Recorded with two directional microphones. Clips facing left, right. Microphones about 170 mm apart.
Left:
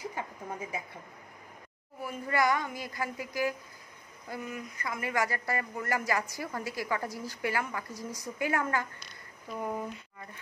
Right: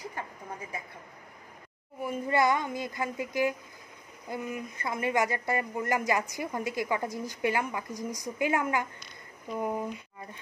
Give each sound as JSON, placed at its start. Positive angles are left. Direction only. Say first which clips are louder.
{"t": 2.0, "sound": "speech", "louder": "right 3 dB", "side_deg": -20}